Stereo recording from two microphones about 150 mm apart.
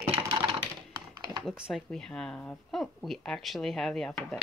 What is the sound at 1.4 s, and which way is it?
Speech, centre (ahead or behind).